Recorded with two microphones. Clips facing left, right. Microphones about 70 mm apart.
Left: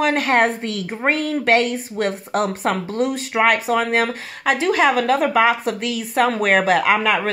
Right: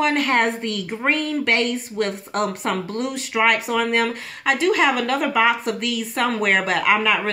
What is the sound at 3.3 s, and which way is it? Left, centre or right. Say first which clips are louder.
Speech: left 2 dB; left.